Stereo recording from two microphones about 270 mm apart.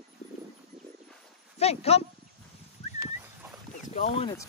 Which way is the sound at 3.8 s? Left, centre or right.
Left.